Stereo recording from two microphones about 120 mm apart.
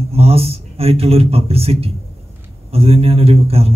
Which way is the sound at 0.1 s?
55° right (ahead or behind).